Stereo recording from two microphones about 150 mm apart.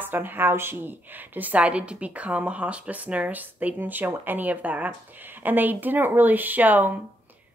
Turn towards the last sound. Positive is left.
turn(degrees=-10)  # may be behind; listen again after turning